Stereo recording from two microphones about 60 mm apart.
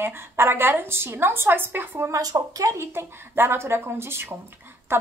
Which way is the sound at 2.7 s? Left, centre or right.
Right.